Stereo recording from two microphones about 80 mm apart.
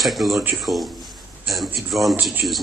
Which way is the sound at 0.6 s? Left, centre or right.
Centre.